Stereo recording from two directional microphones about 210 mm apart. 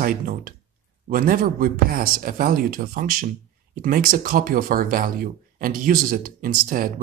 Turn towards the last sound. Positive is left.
turn(degrees=-40)  # may be behind; listen again after turning